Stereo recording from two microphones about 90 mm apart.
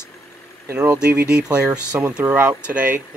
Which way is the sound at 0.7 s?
10° right (ahead or behind).